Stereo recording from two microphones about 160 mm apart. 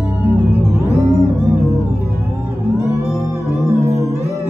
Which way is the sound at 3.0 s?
20° left (ahead or behind).